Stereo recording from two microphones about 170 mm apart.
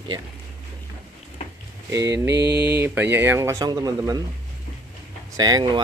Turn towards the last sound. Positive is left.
turn(degrees=-25)  # may be behind; listen again after turning